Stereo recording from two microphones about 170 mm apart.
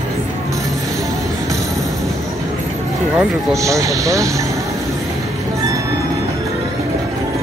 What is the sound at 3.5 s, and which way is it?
Speech, 20° right (ahead or behind).